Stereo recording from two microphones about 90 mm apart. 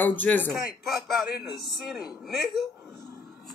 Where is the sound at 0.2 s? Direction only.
20° left (ahead or behind).